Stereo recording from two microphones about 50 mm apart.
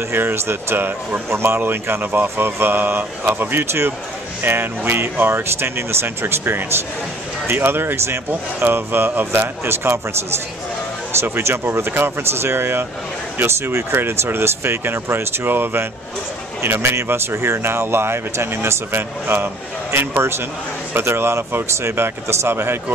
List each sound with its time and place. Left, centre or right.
0.1 s speech: right
1.6 s speech: right
11.1 s speech: right
20.2 s speech: right